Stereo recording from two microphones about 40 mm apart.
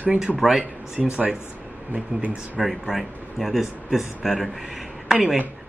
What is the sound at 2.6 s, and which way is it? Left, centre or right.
Speech, centre.